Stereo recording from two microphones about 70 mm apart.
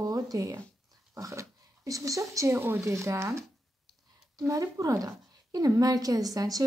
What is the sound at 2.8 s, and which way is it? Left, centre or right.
Speech, right.